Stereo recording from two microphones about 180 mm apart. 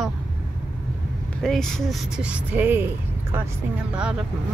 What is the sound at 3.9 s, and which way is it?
Speech, 5° right (ahead or behind).